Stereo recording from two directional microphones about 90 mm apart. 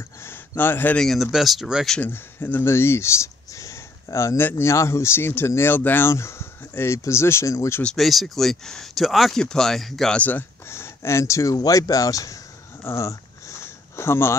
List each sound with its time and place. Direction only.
0.2 s a sound: 25° left (ahead or behind)
0.9 s speech: centre (ahead or behind)
2.0 s speech: 20° left (ahead or behind)
7.8 s speech: centre (ahead or behind)
10.1 s speech: 15° left (ahead or behind)
10.7 s speech: 30° left (ahead or behind)
12.8 s sniff: 35° left (ahead or behind)